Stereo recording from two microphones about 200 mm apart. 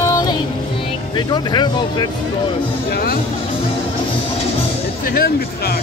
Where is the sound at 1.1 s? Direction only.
20° left (ahead or behind).